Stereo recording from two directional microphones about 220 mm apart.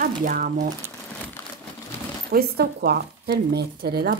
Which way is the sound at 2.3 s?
45° right (ahead or behind).